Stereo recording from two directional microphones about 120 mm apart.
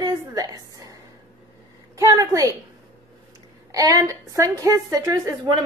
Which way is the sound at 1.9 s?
25° right (ahead or behind).